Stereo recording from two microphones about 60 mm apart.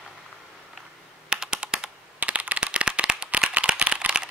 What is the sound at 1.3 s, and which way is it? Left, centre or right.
Computer keyboard, centre.